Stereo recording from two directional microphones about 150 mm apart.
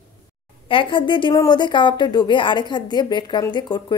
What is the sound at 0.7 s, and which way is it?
A woman's voice, 35° left (ahead or behind).